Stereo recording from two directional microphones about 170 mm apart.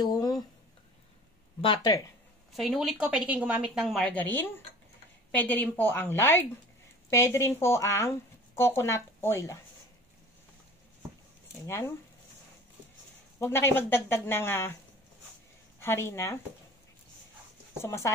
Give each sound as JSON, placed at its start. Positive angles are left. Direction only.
{"t": 0.0, "sound": "a sound", "side_deg": 20}
{"t": 1.6, "sound": "speech", "side_deg": 25}
{"t": 2.5, "sound": "speech", "side_deg": 0}
{"t": 11.6, "sound": "speech", "side_deg": 15}
{"t": 13.4, "sound": "speech", "side_deg": 15}
{"t": 15.8, "sound": "speech", "side_deg": 15}
{"t": 17.7, "sound": "speech", "side_deg": 15}